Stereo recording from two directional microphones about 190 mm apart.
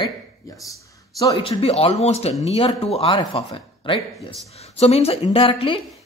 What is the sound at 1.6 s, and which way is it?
Speech, 30° left (ahead or behind).